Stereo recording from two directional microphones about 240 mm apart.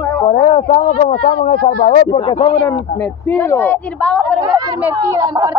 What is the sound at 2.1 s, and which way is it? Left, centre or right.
Speech, left.